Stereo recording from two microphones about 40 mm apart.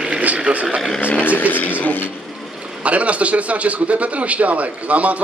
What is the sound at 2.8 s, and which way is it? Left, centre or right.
A man's voice, right.